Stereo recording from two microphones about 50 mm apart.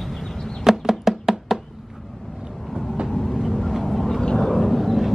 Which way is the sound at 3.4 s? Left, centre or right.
Centre.